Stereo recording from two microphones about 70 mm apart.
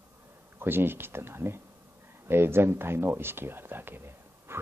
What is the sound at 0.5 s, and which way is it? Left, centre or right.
Speech, right.